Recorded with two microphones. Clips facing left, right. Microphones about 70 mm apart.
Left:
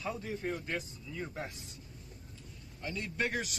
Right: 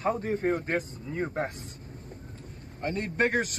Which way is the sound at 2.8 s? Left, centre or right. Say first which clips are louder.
Right 8 dB; right.